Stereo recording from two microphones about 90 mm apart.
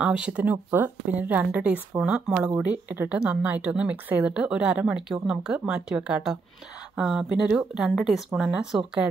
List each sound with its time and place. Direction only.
0.0 s a woman's voice: 15° right (ahead or behind)
2.3 s a woman's voice: 20° right (ahead or behind)